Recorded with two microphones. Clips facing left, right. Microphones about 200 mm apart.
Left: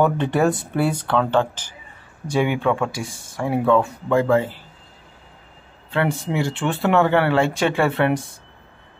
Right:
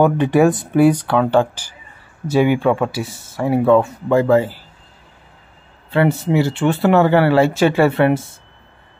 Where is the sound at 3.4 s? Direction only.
10° right (ahead or behind).